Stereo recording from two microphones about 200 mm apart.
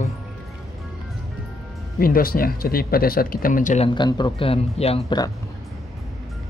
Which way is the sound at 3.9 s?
20° left (ahead or behind).